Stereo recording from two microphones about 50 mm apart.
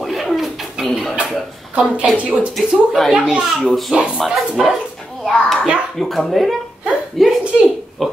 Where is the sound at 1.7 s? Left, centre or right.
Right.